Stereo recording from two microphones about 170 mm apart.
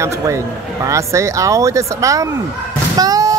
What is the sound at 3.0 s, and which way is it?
Music, 20° right (ahead or behind).